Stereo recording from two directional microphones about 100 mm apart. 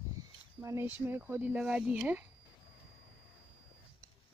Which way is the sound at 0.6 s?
35° right (ahead or behind).